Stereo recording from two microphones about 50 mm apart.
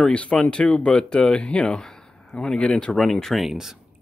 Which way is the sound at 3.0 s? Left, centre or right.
Centre.